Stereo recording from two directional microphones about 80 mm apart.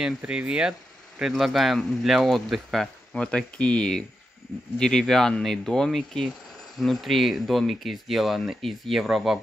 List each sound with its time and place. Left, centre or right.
0.2 s speech: centre
3.1 s speech: centre